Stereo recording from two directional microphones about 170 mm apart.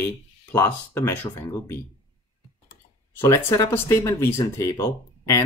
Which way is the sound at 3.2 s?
15° left (ahead or behind).